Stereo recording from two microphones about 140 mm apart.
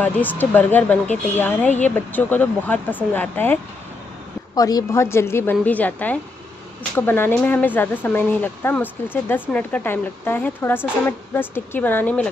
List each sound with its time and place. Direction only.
0.0 s speech: 10° left (ahead or behind)
4.6 s speech: 25° left (ahead or behind)